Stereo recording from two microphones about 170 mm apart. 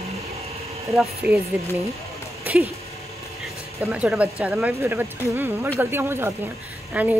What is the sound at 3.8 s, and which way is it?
Speech, 5° right (ahead or behind).